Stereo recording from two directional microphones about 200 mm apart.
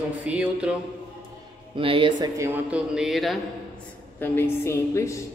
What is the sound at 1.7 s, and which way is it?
Speech, 25° right (ahead or behind).